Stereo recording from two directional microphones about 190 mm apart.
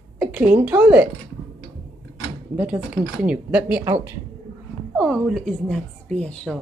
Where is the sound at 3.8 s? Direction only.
15° right (ahead or behind).